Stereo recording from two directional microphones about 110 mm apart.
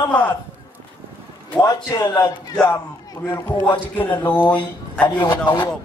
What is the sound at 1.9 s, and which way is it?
Speech, 30° left (ahead or behind).